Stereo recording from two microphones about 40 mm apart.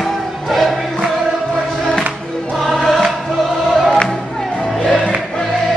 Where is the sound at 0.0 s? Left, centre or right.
Centre.